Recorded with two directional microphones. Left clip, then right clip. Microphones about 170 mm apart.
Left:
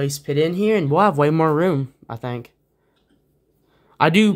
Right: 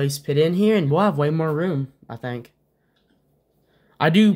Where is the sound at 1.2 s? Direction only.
40° left (ahead or behind).